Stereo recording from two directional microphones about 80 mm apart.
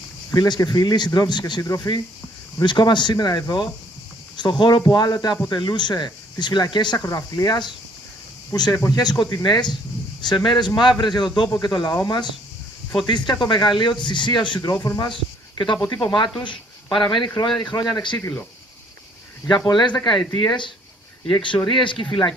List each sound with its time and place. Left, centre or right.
0.3 s speech: left
2.6 s speech: left
7.1 s speech: left
8.7 s speech: left
9.0 s speech: left
12.9 s speech: left
14.6 s speech: left
15.0 s speech: left
17.6 s speech: left
19.4 s speech: left
20.3 s speech: left
21.3 s speech: left